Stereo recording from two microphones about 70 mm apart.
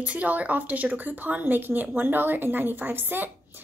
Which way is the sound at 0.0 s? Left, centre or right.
Centre.